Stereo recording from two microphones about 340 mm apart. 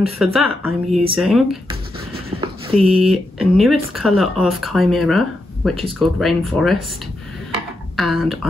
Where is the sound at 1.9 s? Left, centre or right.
Centre.